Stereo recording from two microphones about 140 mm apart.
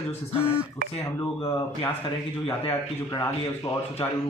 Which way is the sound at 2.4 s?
30° left (ahead or behind).